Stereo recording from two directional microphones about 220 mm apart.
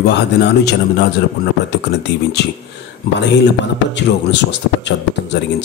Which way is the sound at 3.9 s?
55° left (ahead or behind).